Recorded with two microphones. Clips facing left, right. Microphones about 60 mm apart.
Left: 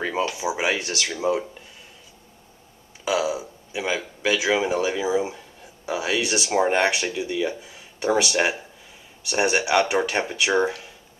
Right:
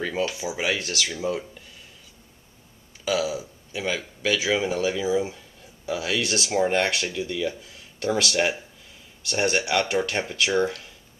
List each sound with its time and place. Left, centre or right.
0.6 s speech: centre
1.0 s speech: left
3.1 s speech: centre